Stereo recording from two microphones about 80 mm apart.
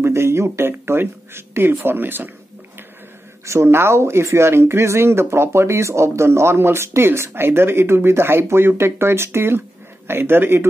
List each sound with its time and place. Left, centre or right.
0.0 s speech: right
3.4 s speech: right